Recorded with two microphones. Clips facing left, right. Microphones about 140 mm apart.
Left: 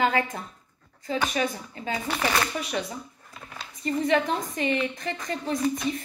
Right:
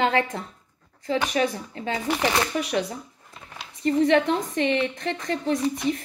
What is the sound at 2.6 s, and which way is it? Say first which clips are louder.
Speech: right 5 dB; 70° right (ahead or behind).